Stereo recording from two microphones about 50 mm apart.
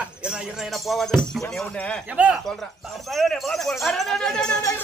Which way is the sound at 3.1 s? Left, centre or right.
Centre.